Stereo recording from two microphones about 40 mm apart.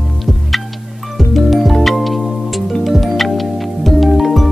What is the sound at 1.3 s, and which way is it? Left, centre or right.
Music, centre.